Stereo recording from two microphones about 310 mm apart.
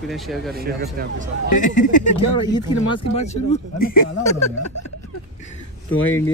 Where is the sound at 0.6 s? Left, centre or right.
Right.